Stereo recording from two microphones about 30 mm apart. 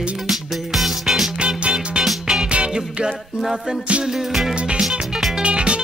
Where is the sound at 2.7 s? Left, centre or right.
Right.